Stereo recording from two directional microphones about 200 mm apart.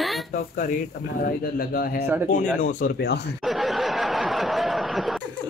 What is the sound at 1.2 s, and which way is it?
Speech, 45° left (ahead or behind).